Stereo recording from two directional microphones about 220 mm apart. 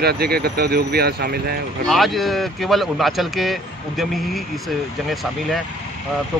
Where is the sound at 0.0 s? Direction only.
45° right (ahead or behind).